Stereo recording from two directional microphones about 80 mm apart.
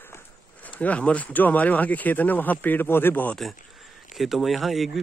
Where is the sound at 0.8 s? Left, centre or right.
Centre.